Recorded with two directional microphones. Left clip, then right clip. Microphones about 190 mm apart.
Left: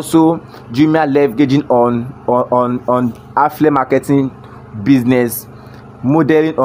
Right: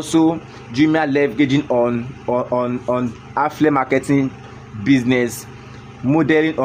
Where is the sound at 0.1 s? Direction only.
20° left (ahead or behind).